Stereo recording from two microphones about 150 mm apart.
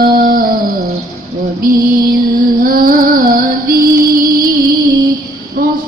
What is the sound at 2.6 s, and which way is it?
Music, 70° right (ahead or behind).